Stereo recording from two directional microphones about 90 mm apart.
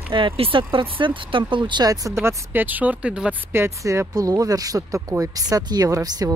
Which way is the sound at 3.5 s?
30° right (ahead or behind).